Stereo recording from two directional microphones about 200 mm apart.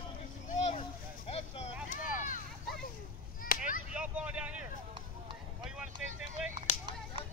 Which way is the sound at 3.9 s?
5° right (ahead or behind).